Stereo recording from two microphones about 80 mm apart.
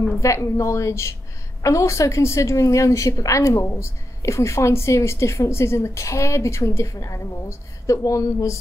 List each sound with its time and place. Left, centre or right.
0.2 s a woman's voice: left